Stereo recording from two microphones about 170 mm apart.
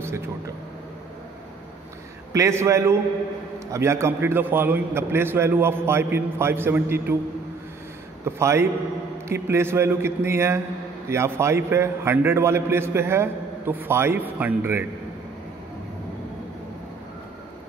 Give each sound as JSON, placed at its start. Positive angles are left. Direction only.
{"t": 2.3, "sound": "a man's voice", "side_deg": -15}
{"t": 8.3, "sound": "a man's voice", "side_deg": -15}